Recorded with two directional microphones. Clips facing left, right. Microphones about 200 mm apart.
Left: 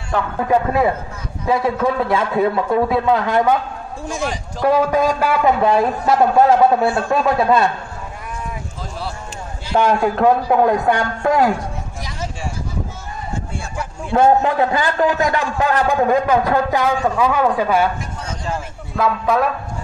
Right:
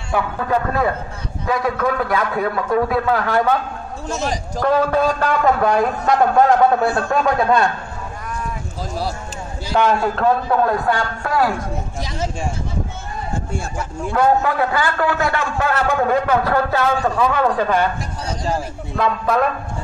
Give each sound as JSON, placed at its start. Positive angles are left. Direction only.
{"t": 0.4, "sound": "a man's voice", "side_deg": 20}
{"t": 4.6, "sound": "a man's voice", "side_deg": 10}
{"t": 9.7, "sound": "a man's voice", "side_deg": 10}
{"t": 14.1, "sound": "a man's voice", "side_deg": 25}
{"t": 18.2, "sound": "a sound", "side_deg": -35}
{"t": 18.9, "sound": "a man's voice", "side_deg": 0}